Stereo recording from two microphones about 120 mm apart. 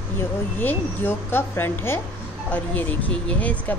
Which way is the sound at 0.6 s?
15° left (ahead or behind).